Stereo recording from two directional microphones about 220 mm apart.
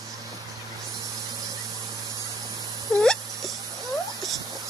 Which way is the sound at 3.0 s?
5° left (ahead or behind).